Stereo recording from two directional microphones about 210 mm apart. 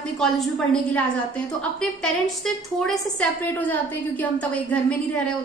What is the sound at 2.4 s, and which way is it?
A woman's voice, centre (ahead or behind).